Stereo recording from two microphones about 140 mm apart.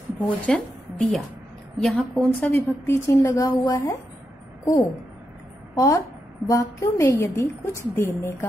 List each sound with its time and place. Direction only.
0.2 s a woman's voice: centre (ahead or behind); by 4.0 s 25° left (ahead or behind)
5.8 s a woman's voice: 25° left (ahead or behind)